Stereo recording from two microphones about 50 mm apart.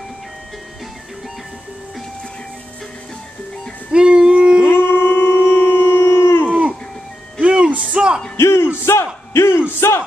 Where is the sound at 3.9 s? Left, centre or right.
Centre.